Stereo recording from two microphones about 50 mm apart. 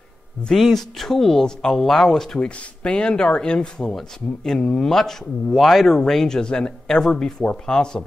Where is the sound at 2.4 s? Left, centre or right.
Left.